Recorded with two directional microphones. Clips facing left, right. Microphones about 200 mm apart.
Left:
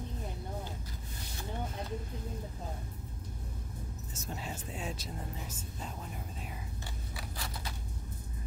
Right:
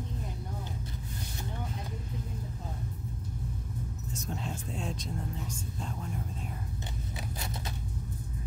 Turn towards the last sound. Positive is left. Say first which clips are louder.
# right 4 dB
turn(degrees=-20)  # may be behind; listen again after turning